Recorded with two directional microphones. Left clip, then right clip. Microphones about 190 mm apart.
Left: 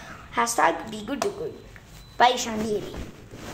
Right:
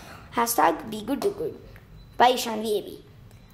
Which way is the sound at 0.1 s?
30° right (ahead or behind).